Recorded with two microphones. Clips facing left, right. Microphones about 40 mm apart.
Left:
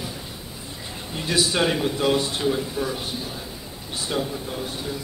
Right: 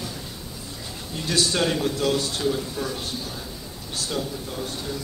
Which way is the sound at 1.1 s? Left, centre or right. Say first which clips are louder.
Left 1 dB; centre.